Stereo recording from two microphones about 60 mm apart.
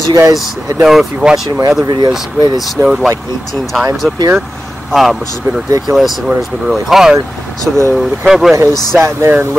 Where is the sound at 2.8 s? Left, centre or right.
Centre.